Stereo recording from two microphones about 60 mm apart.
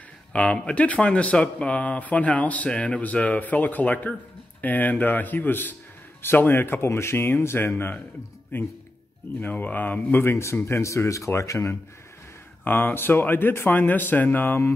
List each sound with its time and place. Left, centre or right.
0.3 s speech: left
10.3 s speech: left
12.6 s speech: left